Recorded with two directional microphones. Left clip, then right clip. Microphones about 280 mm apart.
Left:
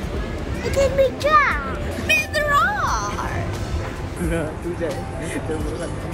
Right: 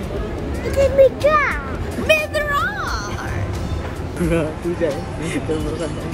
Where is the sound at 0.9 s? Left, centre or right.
Centre.